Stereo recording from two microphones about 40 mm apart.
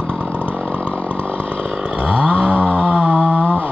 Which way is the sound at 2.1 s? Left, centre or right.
Right.